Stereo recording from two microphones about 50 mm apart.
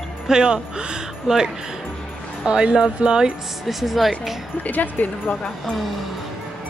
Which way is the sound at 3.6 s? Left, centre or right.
Centre.